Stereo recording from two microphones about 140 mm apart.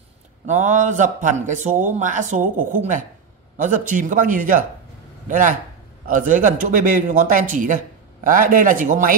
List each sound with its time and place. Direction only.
0.5 s a man's voice: 60° right (ahead or behind)